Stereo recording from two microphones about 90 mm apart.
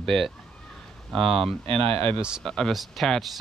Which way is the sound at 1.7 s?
90° right.